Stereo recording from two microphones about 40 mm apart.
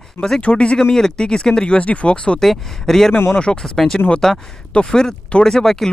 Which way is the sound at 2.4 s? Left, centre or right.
Centre.